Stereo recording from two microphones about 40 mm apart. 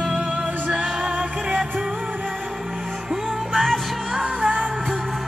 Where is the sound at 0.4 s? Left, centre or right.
Right.